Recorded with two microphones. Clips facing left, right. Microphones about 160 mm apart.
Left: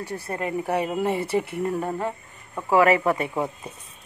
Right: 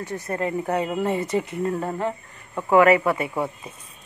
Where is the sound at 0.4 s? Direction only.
15° left (ahead or behind).